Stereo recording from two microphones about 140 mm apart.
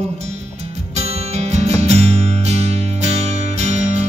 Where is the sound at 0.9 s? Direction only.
50° right (ahead or behind).